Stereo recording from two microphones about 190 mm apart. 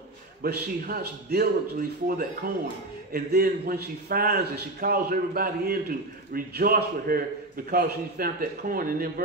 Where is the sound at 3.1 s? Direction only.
50° right (ahead or behind).